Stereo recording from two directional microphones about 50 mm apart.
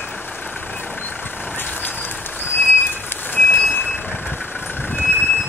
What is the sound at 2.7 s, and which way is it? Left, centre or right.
Vehicle, left.